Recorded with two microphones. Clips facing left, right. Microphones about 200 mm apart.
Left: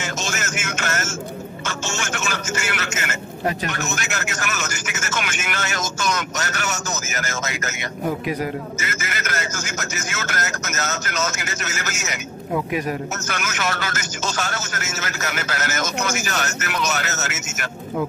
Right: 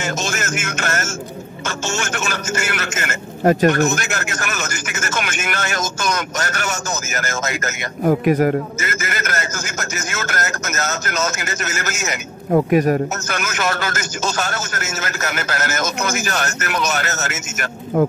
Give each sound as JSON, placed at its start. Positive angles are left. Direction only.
{"t": 0.0, "sound": "vehicle", "side_deg": -50}
{"t": 1.7, "sound": "a man's voice", "side_deg": -50}